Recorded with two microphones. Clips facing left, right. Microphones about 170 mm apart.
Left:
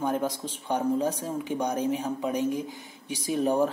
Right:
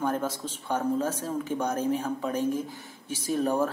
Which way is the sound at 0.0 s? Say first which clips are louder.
Left 1 dB; 15° left (ahead or behind).